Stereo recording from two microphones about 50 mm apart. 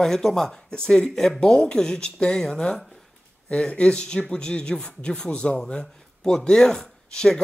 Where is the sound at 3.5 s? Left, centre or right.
Centre.